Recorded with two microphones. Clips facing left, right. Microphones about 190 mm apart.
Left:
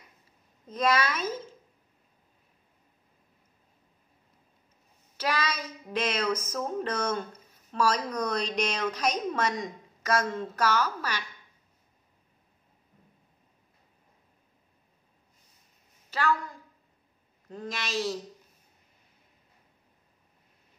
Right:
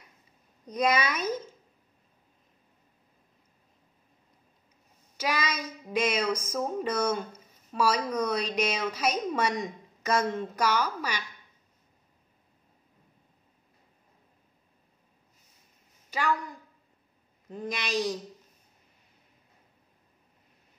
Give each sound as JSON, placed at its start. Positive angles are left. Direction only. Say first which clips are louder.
{"t": 0.7, "sound": "speech", "louder": "even", "side_deg": -15}
{"t": 5.1, "sound": "speech", "louder": "even", "side_deg": -10}
{"t": 16.1, "sound": "a woman's voice", "louder": "left 1 dB", "side_deg": -15}